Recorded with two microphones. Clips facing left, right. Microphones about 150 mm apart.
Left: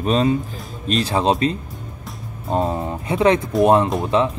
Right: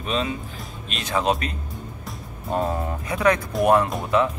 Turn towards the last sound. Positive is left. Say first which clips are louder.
# left 3 dB
turn(degrees=25)  # may be behind; listen again after turning